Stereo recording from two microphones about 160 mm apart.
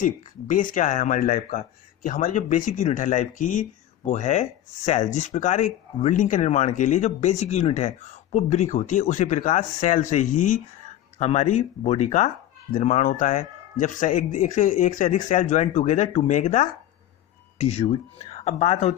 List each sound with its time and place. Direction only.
0.0 s speech: 55° left (ahead or behind)